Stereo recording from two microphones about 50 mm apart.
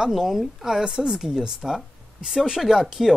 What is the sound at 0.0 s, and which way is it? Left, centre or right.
A woman's voice, centre.